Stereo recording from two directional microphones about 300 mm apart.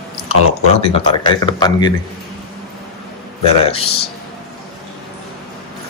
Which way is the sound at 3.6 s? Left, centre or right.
Centre.